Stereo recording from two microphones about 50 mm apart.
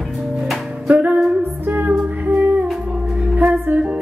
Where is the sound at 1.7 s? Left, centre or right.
Right.